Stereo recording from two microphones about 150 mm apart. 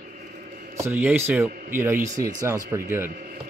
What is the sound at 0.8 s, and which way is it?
A man's voice, 15° right (ahead or behind).